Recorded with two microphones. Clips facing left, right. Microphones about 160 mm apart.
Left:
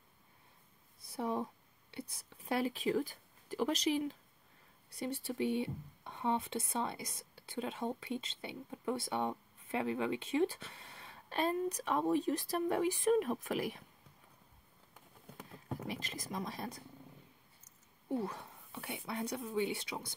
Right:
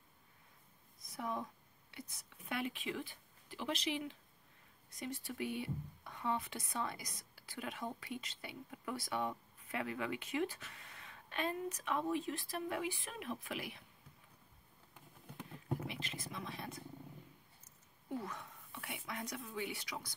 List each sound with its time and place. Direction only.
0.9 s a sound: 30° left (ahead or behind)
4.9 s speech: 30° left (ahead or behind)
15.9 s speech: 40° left (ahead or behind)
18.1 s speech: 30° left (ahead or behind)